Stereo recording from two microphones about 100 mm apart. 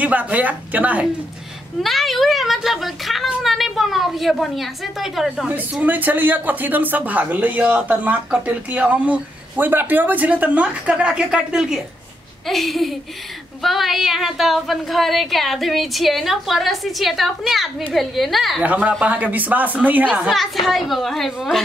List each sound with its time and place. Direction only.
0.0 s speech: 15° right (ahead or behind)
1.8 s a woman's voice: centre (ahead or behind)
5.5 s a woman's voice: 15° right (ahead or behind); by 18.6 s centre (ahead or behind)
18.6 s speech: 15° right (ahead or behind)
20.2 s a woman's voice: centre (ahead or behind)